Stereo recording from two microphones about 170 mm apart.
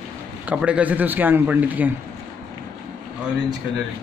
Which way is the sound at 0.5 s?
5° right (ahead or behind).